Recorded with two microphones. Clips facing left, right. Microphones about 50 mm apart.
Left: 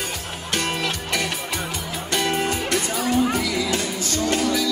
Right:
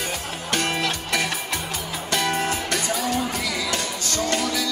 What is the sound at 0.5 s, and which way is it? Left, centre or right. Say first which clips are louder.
Music: even; centre.